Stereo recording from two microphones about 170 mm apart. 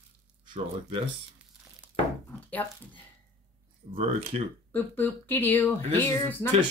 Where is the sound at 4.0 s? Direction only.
35° right (ahead or behind).